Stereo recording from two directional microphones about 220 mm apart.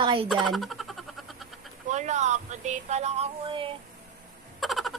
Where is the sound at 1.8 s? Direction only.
30° right (ahead or behind).